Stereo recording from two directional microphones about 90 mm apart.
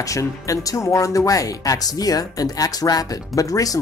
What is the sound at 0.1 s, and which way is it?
Speech, 40° left (ahead or behind).